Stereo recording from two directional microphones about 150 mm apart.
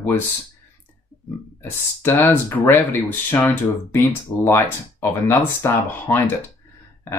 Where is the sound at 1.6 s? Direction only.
15° left (ahead or behind).